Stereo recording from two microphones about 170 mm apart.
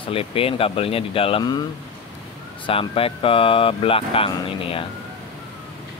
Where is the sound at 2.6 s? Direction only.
35° left (ahead or behind).